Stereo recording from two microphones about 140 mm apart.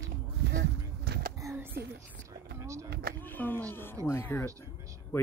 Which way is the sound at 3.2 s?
15° left (ahead or behind).